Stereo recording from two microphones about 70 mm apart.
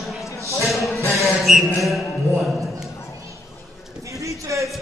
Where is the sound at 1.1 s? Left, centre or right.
Centre.